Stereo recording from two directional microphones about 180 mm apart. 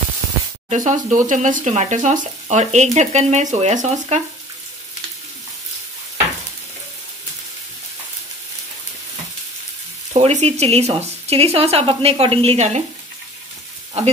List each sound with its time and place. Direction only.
0.7 s speech: 45° right (ahead or behind)
10.1 s speech: 35° right (ahead or behind)